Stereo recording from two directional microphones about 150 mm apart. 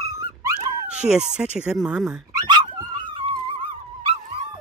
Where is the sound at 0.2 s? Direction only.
25° right (ahead or behind).